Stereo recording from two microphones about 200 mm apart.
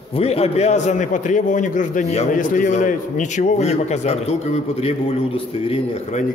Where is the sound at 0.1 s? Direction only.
30° left (ahead or behind).